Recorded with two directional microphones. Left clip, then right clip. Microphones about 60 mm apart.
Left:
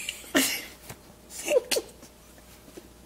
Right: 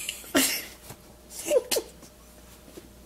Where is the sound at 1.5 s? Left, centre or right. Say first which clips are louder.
Even; left.